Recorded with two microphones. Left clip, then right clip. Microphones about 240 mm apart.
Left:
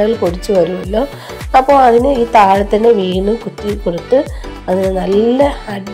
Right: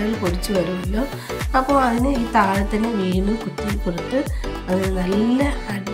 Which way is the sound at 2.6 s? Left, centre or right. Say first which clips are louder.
Left 13 dB; centre.